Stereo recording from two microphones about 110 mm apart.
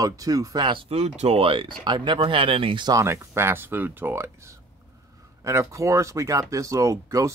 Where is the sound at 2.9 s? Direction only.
25° right (ahead or behind).